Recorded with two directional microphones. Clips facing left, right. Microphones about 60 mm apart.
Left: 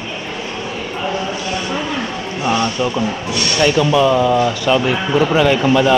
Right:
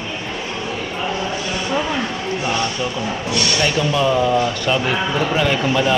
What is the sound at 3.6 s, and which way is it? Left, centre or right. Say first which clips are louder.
A man's voice: left 7 dB; centre.